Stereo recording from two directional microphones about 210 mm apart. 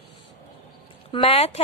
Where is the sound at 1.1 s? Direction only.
25° left (ahead or behind).